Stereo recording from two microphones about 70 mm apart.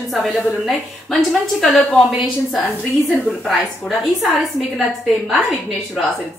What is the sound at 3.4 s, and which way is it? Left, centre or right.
Speech, centre.